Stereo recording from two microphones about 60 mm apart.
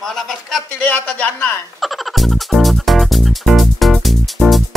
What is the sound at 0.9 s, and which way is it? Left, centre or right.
Speech, left.